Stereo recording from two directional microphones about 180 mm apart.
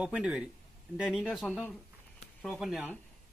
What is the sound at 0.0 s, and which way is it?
Speech, 5° right (ahead or behind).